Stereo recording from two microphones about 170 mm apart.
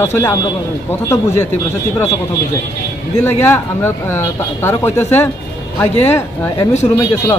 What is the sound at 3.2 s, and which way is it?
Speech, 15° left (ahead or behind).